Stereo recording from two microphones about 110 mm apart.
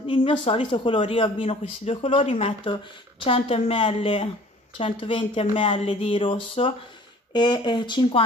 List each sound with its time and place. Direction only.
0.1 s speech: 55° left (ahead or behind)
2.6 s speech: 50° left (ahead or behind)
3.3 s speech: 65° left (ahead or behind)
7.3 s speech: 45° left (ahead or behind)